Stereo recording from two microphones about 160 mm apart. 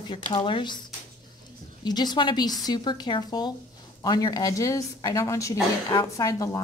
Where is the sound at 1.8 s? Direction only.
25° left (ahead or behind).